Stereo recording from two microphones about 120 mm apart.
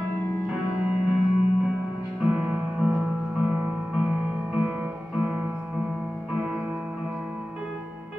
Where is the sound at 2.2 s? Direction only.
10° right (ahead or behind).